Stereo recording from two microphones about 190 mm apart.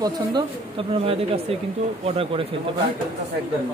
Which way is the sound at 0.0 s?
20° right (ahead or behind).